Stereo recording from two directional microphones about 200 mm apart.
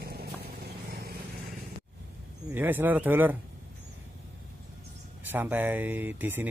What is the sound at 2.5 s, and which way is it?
Speech, 10° right (ahead or behind).